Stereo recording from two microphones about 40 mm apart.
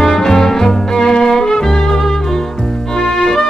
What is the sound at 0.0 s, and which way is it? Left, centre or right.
Music, centre.